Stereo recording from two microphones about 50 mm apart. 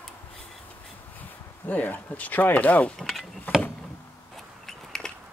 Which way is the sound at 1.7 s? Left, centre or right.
Left.